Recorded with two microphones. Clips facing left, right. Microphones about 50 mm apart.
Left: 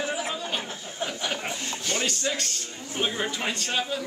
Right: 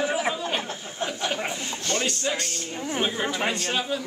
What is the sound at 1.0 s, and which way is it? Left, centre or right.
Chuckle, centre.